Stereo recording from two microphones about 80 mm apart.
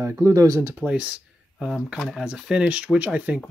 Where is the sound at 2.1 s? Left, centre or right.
Centre.